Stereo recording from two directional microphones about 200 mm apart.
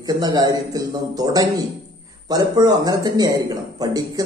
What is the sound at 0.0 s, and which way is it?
Speech, 20° right (ahead or behind).